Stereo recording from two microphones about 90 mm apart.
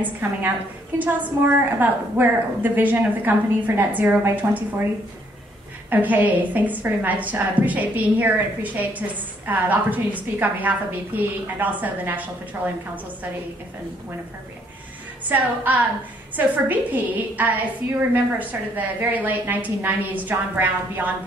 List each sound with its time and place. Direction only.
0.0 s a woman's voice: 20° right (ahead or behind)
5.9 s a woman's voice: 20° right (ahead or behind)
15.2 s a woman's voice: 20° right (ahead or behind)